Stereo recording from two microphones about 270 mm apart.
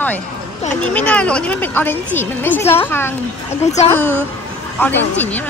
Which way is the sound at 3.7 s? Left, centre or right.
Left.